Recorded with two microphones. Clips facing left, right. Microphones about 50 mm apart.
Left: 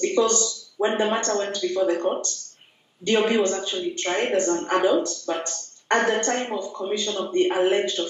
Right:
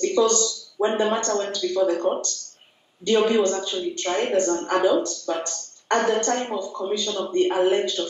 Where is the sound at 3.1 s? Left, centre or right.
Left.